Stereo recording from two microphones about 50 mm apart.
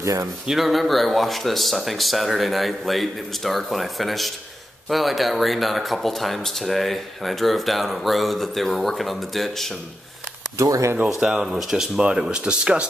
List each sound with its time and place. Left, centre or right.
0.0 s speech: right
0.5 s speech: centre
11.1 s speech: centre
12.0 s speech: centre